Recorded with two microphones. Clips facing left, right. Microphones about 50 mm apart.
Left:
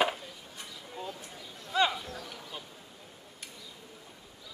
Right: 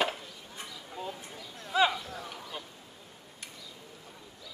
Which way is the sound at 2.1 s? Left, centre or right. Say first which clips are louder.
Right 2 dB; centre.